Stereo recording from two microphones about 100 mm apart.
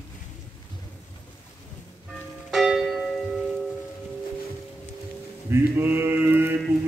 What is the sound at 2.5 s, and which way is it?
Church bell, centre (ahead or behind).